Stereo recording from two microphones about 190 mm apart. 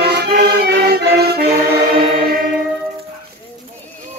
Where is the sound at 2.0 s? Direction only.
25° right (ahead or behind).